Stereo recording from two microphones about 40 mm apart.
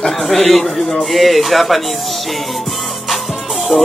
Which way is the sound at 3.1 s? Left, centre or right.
Centre.